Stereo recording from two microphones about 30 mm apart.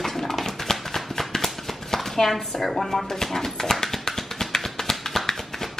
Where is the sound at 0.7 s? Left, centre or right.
Centre.